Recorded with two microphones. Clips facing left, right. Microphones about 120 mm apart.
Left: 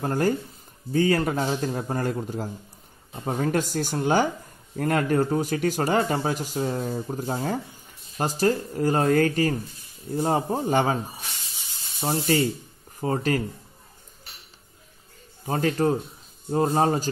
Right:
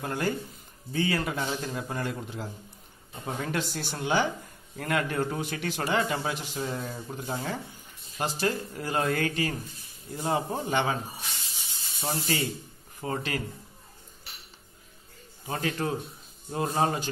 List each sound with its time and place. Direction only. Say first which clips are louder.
0.0 s speech: left 6 dB; 40° left (ahead or behind)
12.0 s speech: left 7 dB; 35° left (ahead or behind)
15.4 s speech: left 7 dB; 40° left (ahead or behind)